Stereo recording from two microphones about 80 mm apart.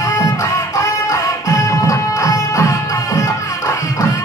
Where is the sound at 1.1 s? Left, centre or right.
Left.